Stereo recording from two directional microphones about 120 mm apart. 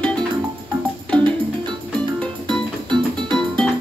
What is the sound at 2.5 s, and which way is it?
Music, 40° right (ahead or behind).